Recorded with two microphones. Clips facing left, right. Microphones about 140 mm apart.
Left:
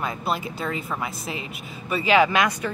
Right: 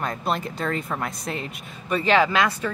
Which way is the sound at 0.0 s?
5° left (ahead or behind).